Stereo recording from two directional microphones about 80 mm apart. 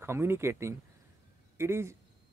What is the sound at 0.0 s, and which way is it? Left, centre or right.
Speech, right.